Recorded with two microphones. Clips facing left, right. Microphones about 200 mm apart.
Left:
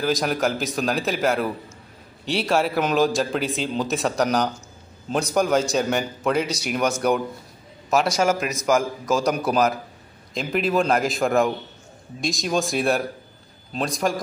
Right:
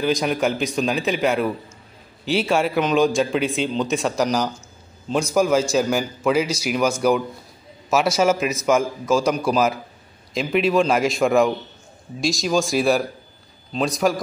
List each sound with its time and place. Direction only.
0.0 s speech: centre (ahead or behind)
8.2 s speech: 5° right (ahead or behind)